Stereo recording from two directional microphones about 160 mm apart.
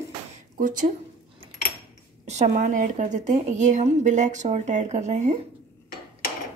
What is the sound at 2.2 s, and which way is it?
A woman's voice, 45° right (ahead or behind).